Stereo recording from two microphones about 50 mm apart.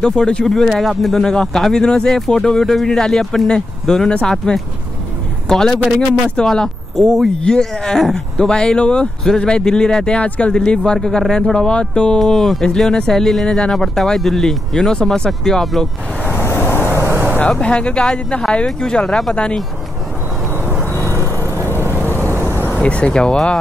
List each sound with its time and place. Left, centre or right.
0.0 s speech: centre
7.0 s speech: centre
12.2 s speech: centre
15.6 s speech: centre
16.3 s vehicle: left
17.0 s vehicle: right
17.5 s speech: left
20.9 s vehicle: left
22.8 s speech: left